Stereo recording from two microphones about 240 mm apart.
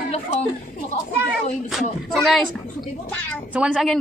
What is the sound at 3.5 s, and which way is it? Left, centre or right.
Speech, centre.